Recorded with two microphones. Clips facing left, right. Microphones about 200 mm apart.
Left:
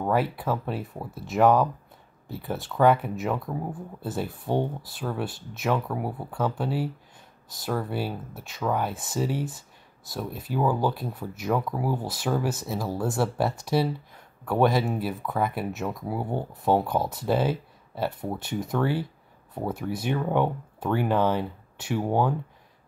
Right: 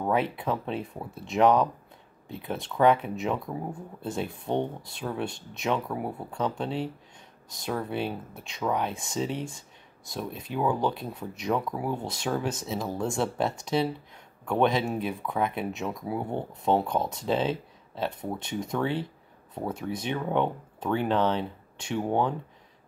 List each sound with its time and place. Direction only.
0.0 s speech: centre (ahead or behind)